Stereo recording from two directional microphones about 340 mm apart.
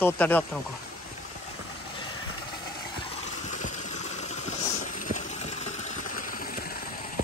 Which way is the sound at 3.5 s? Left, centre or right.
Left.